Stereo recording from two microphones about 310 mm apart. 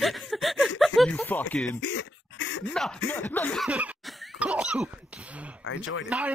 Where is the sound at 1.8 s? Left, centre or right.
Left.